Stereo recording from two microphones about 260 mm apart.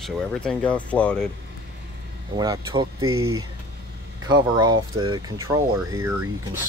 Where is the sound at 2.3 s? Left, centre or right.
Centre.